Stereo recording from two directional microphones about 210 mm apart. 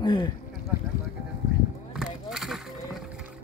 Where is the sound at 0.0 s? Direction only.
20° left (ahead or behind).